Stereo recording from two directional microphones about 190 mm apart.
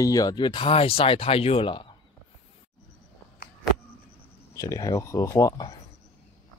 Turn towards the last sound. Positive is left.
turn(degrees=20)  # may be behind; listen again after turning